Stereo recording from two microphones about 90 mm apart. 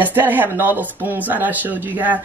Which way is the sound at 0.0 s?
20° right (ahead or behind).